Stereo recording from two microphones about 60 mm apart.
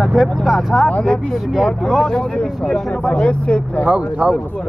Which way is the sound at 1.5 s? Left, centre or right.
Centre.